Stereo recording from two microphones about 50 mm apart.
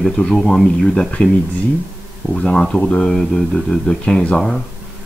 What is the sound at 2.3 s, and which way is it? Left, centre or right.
A man's voice, centre.